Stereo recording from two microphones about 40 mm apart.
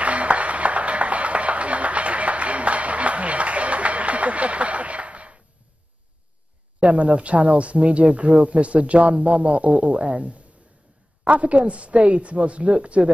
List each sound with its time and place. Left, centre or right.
0.0 s music: right
6.8 s speech: right